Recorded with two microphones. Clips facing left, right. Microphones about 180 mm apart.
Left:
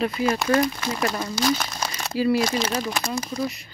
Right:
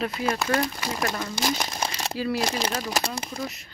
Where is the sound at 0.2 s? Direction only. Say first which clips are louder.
Left 3 dB; centre (ahead or behind).